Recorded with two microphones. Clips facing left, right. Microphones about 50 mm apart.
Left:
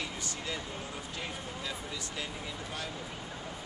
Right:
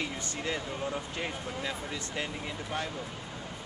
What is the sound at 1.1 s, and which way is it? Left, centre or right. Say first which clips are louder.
Speech: right 4 dB; right.